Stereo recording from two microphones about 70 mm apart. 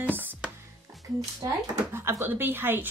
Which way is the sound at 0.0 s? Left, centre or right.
Right.